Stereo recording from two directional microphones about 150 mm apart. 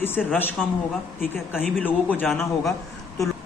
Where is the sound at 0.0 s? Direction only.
15° left (ahead or behind).